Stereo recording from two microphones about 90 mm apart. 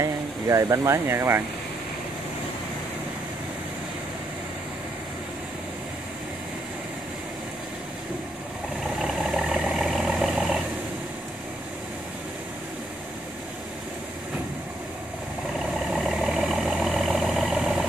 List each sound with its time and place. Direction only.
0.0 s speech: 35° right (ahead or behind)
8.9 s vehicle: 5° right (ahead or behind)
15.9 s vehicle: 5° right (ahead or behind)